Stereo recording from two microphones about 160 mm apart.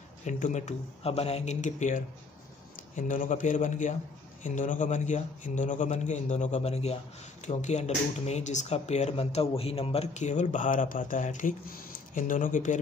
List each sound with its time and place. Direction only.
0.2 s speech: 45° left (ahead or behind)